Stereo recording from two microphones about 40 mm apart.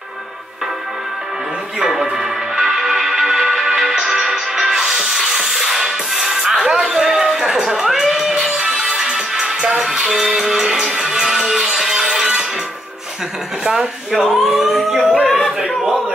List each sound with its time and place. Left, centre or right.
1.8 s music: centre
14.1 s speech: centre
15.2 s a sound: centre